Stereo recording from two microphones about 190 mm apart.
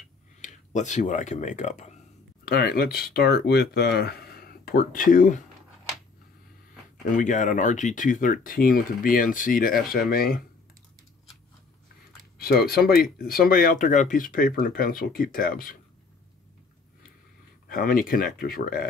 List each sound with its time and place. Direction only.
0.4 s speech: 40° left (ahead or behind)
2.4 s speech: 55° left (ahead or behind)
7.1 s speech: 40° left (ahead or behind)
12.4 s speech: 55° left (ahead or behind)
17.6 s speech: 50° left (ahead or behind)